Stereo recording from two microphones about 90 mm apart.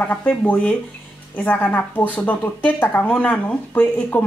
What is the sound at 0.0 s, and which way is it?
Speech, 20° left (ahead or behind).